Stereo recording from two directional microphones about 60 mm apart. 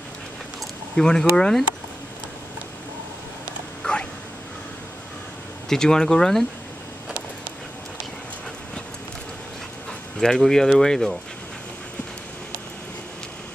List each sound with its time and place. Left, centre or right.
0.9 s speech: centre
3.8 s a sound: centre
5.7 s speech: centre
10.2 s speech: centre